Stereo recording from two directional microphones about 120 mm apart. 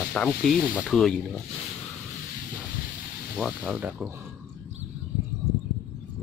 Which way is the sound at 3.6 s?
10° right (ahead or behind).